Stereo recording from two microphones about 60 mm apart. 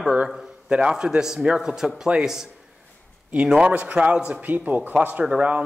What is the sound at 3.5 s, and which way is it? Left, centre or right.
A man's voice, centre.